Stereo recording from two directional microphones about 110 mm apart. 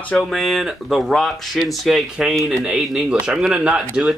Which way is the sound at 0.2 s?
Centre (ahead or behind).